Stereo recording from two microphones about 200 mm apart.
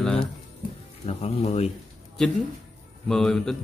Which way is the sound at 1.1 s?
30° left (ahead or behind).